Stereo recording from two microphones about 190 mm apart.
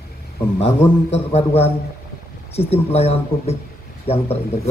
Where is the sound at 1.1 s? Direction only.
35° left (ahead or behind).